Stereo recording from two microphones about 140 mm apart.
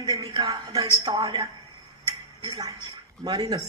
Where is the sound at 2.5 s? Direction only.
25° right (ahead or behind).